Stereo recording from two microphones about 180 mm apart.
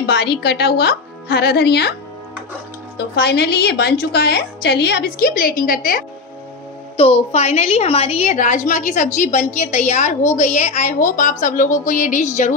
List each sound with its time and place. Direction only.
0.0 s a woman's voice: 65° left (ahead or behind)
3.0 s a woman's voice: 65° left (ahead or behind); by 6.0 s 50° left (ahead or behind)
7.0 s a woman's voice: 35° left (ahead or behind)